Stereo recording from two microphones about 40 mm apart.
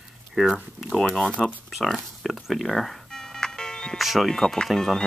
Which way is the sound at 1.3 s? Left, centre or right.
Left.